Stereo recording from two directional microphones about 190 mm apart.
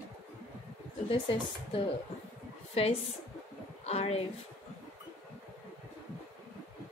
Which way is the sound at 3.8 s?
35° left (ahead or behind).